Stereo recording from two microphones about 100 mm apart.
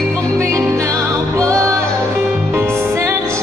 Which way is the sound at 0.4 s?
30° right (ahead or behind).